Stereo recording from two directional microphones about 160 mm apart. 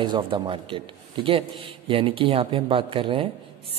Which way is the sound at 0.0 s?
30° right (ahead or behind).